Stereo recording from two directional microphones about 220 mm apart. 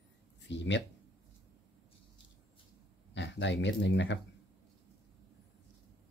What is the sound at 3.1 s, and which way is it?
Speech, 55° left (ahead or behind).